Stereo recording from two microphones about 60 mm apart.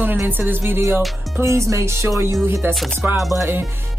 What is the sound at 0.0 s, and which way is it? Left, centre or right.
Music, right.